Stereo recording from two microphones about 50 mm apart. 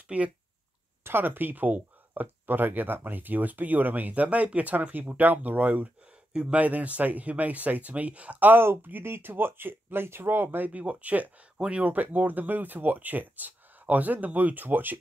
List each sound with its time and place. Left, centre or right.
0.1 s speech: right
1.0 s speech: right
6.3 s speech: centre
6.6 s speech: right
8.5 s speech: right
10.7 s speech: right
11.5 s speech: centre
11.8 s speech: right